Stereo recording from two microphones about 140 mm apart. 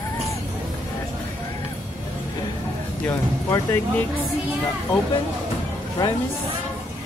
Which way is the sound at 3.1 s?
20° left (ahead or behind).